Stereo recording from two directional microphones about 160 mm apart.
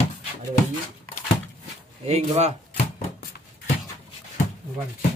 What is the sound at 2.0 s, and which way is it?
Speech, 45° right (ahead or behind).